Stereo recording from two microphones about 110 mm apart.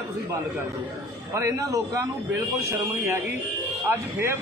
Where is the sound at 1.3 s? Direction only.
25° right (ahead or behind).